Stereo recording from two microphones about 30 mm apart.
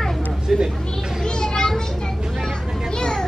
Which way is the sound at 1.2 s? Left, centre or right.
Left.